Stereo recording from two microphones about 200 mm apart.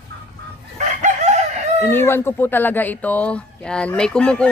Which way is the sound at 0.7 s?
35° right (ahead or behind).